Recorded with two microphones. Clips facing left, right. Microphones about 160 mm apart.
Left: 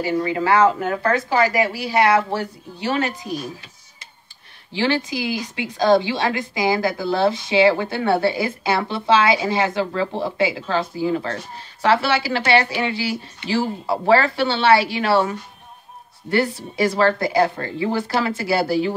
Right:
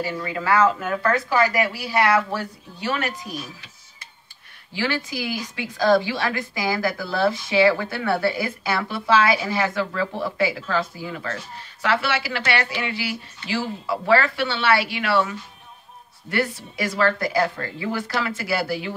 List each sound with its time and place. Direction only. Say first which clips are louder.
0.0 s speech: left 6 dB; 25° left (ahead or behind)
4.7 s a woman's voice: left 5 dB; 25° left (ahead or behind)